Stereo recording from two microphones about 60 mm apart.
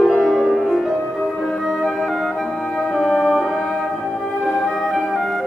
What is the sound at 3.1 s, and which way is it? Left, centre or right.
Music, centre.